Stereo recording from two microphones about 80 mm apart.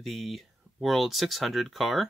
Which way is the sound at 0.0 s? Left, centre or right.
Centre.